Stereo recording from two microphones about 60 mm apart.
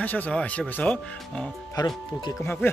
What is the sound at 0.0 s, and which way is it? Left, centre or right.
Speech, left.